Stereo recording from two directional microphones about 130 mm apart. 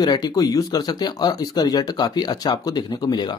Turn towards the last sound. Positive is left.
turn(degrees=35)  # may be behind; listen again after turning